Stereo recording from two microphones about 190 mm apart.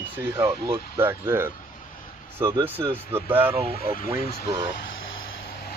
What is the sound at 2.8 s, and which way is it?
Speech, 20° right (ahead or behind).